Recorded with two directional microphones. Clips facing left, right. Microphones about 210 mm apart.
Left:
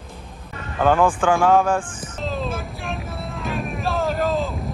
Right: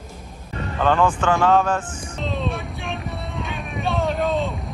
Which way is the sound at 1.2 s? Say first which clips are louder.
Left 1 dB; 10° left (ahead or behind).